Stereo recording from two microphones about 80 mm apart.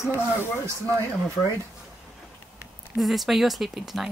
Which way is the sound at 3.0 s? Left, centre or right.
Centre.